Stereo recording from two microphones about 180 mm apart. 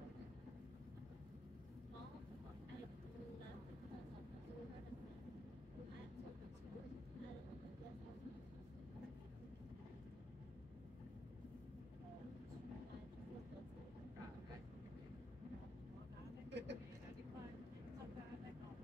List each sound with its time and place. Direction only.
16.4 s vehicle: 75° right (ahead or behind)